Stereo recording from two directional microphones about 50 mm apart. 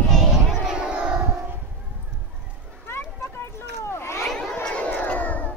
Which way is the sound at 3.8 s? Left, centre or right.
Left.